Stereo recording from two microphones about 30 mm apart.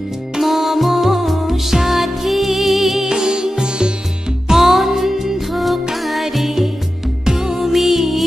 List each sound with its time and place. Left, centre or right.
0.4 s music: centre
3.1 s music: right
4.5 s music: centre
7.2 s music: centre